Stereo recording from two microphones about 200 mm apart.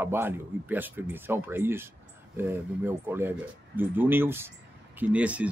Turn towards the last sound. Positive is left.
turn(degrees=-5)  # may be behind; listen again after turning